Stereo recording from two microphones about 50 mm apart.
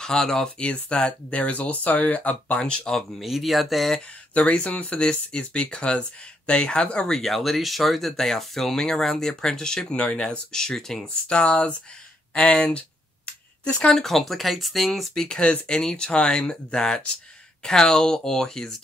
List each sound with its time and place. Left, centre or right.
0.0 s speech: centre
3.2 s speech: centre
4.3 s speech: left; by 11.0 s centre
11.2 s speech: left
12.4 s a sound: left
13.9 s speech: centre
15.2 s speech: centre